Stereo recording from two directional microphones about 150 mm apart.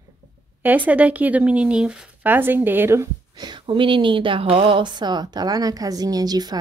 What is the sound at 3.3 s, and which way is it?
Speech, 30° right (ahead or behind).